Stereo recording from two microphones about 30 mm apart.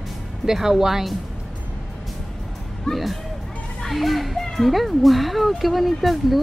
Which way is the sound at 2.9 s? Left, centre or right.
Left.